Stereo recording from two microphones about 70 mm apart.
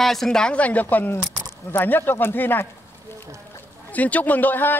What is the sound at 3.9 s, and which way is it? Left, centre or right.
Speech, left.